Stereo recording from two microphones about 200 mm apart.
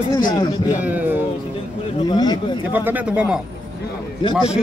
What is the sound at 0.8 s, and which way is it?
Speech, 10° right (ahead or behind).